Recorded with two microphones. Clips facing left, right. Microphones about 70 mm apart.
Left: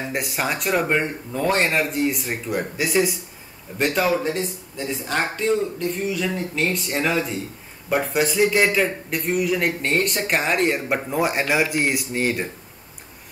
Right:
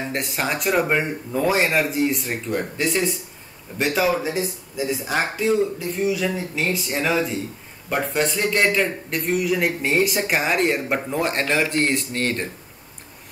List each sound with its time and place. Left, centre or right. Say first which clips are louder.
0.1 s a man's voice: left 1 dB; centre